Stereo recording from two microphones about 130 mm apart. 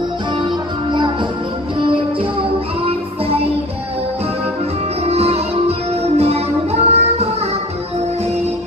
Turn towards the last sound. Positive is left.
turn(degrees=-55)  # may be behind; listen again after turning